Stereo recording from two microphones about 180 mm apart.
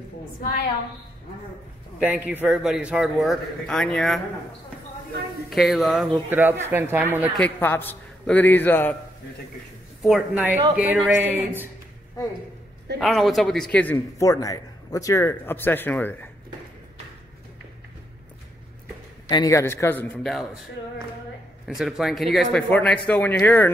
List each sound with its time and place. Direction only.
0.4 s a woman's voice: 50° left (ahead or behind)
2.0 s speech: 10° right (ahead or behind)
5.5 s speech: centre (ahead or behind)
6.3 s speech: 10° right (ahead or behind)
7.3 s a man's voice: 10° left (ahead or behind)
10.0 s speech: 5° right (ahead or behind)
13.0 s a man's voice: centre (ahead or behind)
19.2 s a man's voice: 20° left (ahead or behind)
21.6 s a man's voice: centre (ahead or behind)